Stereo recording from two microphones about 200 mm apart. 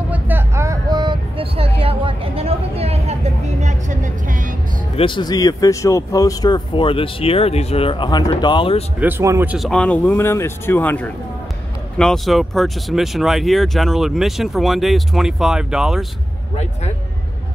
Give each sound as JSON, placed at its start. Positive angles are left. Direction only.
{"t": 0.1, "sound": "vehicle", "side_deg": -10}
{"t": 4.9, "sound": "speech", "side_deg": 25}
{"t": 9.0, "sound": "speech", "side_deg": -15}
{"t": 9.6, "sound": "speech", "side_deg": 5}